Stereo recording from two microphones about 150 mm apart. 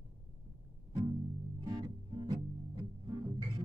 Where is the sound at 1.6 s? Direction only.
30° right (ahead or behind).